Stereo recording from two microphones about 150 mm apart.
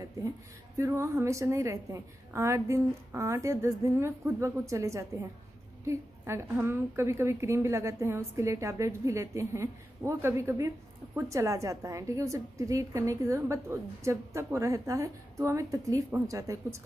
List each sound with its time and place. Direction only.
0.7 s a woman's voice: 20° right (ahead or behind)